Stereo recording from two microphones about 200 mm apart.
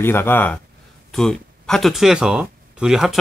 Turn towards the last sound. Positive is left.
turn(degrees=0)  # may be behind; listen again after turning